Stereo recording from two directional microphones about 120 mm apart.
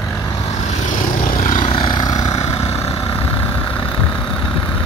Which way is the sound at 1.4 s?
90° left.